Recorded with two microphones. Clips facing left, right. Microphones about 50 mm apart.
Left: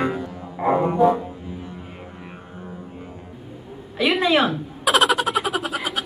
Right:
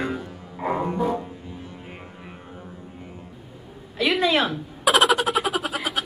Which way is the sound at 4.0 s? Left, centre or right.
Centre.